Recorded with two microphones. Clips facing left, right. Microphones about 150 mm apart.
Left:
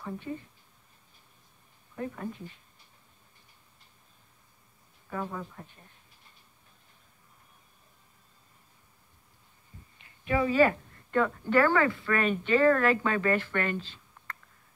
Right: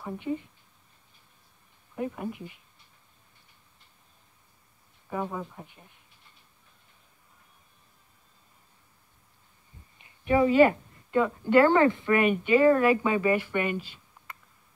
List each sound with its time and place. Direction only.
0.0 s speech: 15° right (ahead or behind)
2.0 s speech: 15° right (ahead or behind)
5.1 s speech: 15° right (ahead or behind)
10.0 s a woman's voice: 25° right (ahead or behind)